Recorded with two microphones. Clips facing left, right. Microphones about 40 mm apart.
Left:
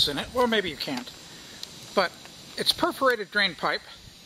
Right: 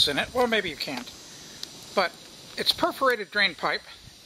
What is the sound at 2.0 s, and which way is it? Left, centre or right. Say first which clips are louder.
Speech: even; centre.